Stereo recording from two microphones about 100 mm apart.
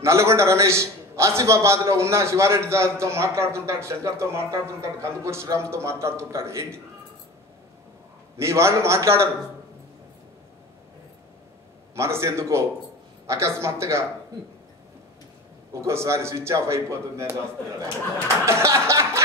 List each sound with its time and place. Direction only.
0.0 s a man's voice: 30° right (ahead or behind)
8.4 s a man's voice: 25° right (ahead or behind)
11.9 s a man's voice: 25° right (ahead or behind)
15.7 s a man's voice: 30° right (ahead or behind)